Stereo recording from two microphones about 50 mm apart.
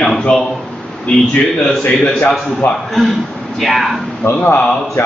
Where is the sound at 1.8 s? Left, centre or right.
Left.